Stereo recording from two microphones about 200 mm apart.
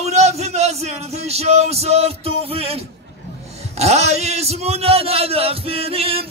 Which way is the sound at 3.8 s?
35° right (ahead or behind).